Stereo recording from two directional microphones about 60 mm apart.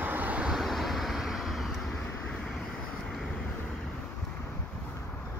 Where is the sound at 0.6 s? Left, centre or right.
Centre.